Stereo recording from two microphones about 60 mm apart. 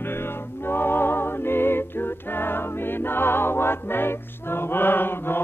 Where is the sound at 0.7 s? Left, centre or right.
Left.